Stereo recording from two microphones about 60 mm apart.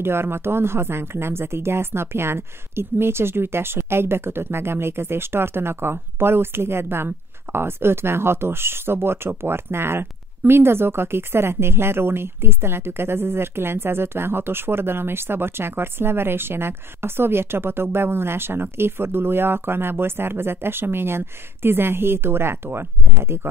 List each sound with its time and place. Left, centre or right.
0.0 s speech: right